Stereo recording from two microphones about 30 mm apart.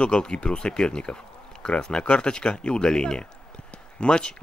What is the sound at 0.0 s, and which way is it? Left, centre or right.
Speech, left.